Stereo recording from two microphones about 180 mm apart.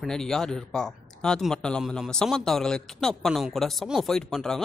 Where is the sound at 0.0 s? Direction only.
5° left (ahead or behind).